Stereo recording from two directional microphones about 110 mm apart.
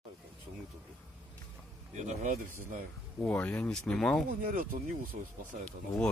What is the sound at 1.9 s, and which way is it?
Speech, 90° right.